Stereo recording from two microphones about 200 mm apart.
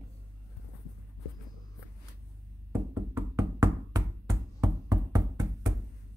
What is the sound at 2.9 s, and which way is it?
Knock, 15° right (ahead or behind).